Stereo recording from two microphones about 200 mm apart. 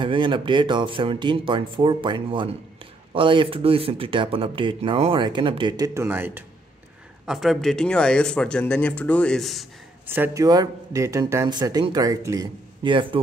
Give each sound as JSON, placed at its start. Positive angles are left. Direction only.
{"t": 0.0, "sound": "speech", "side_deg": -25}
{"t": 10.0, "sound": "speech", "side_deg": -10}